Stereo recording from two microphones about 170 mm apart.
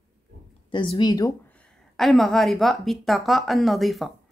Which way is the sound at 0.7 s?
30° left (ahead or behind).